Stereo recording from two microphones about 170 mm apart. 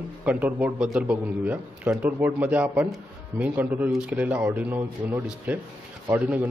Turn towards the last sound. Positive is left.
turn(degrees=-10)  # may be behind; listen again after turning